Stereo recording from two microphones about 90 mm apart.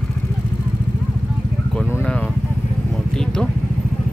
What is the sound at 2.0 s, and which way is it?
Vehicle, 15° left (ahead or behind).